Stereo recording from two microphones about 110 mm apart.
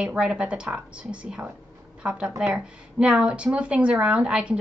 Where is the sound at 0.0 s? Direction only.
10° right (ahead or behind).